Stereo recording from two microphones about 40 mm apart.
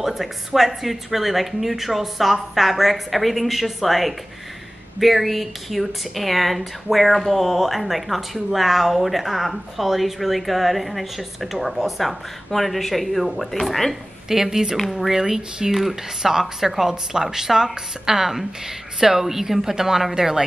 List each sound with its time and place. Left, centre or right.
0.0 s speech: centre
14.4 s speech: centre